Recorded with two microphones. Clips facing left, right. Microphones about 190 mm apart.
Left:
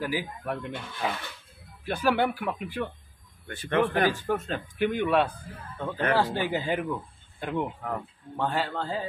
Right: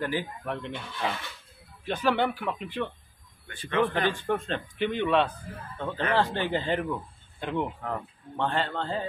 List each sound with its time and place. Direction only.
0.0 s a man's voice: 5° left (ahead or behind)